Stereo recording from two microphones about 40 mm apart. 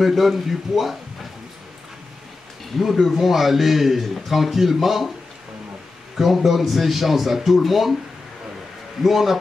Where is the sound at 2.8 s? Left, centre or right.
Centre.